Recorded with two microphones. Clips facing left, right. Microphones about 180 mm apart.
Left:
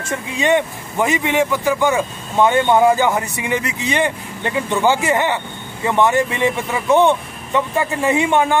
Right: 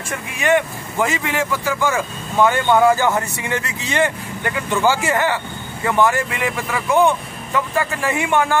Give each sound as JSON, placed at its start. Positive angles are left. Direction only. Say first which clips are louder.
{"t": 0.1, "sound": "a man's voice", "louder": "left 1 dB", "side_deg": 20}